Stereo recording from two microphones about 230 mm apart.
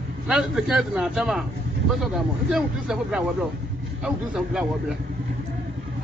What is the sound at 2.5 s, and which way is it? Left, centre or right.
A man's voice, centre.